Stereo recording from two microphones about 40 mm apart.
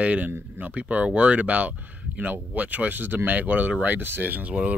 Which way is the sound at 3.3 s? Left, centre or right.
Right.